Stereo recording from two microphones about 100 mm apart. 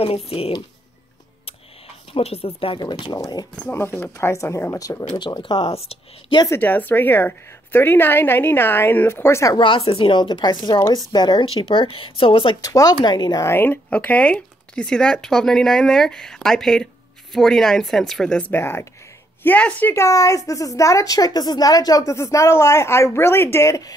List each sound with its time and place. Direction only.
0.0 s speech: 75° left (ahead or behind)
2.1 s speech: 75° left (ahead or behind)
2.8 s speech: 45° left (ahead or behind)
3.7 s a woman's voice: 20° left (ahead or behind)
5.2 s speech: 50° left (ahead or behind)
5.6 s speech: 90° left
6.5 s a woman's voice: 20° left (ahead or behind)
9.6 s speech: 65° left (ahead or behind); by 11.4 s 45° left (ahead or behind)
11.4 s speech: 65° left (ahead or behind)
12.6 s a woman's voice: 40° left (ahead or behind)
13.0 s speech: 50° left (ahead or behind)
13.4 s speech: 25° left (ahead or behind); by 18.5 s 5° left (ahead or behind)
18.5 s a woman's voice: 25° left (ahead or behind)
19.9 s a woman's voice: 30° left (ahead or behind)